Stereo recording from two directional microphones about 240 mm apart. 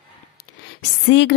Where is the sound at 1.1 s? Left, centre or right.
Left.